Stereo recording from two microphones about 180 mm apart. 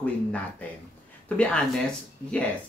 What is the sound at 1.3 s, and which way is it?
Speech, 5° left (ahead or behind).